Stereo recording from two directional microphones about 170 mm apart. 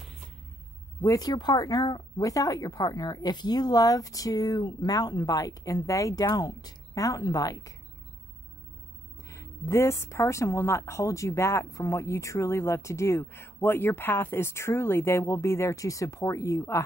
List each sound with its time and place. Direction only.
1.0 s speech: 20° left (ahead or behind)
9.3 s a woman's voice: 15° left (ahead or behind)